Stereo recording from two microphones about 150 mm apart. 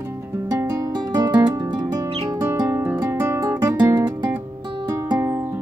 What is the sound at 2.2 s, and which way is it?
Guitar, 20° right (ahead or behind).